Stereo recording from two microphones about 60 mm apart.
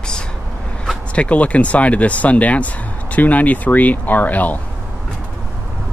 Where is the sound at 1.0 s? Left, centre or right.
Left.